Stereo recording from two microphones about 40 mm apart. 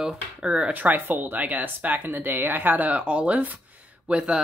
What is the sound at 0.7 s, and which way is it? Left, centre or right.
A woman's voice, right.